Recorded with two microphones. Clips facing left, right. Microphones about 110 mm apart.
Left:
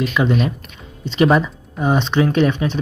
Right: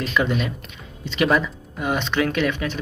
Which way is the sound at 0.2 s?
15° left (ahead or behind).